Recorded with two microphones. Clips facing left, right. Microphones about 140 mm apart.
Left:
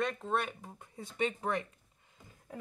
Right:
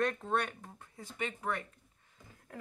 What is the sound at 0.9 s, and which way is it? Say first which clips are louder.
Speech: left 6 dB; 25° left (ahead or behind).